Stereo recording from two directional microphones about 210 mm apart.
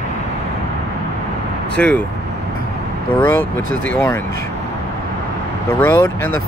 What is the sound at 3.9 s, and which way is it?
Speech, 10° left (ahead or behind).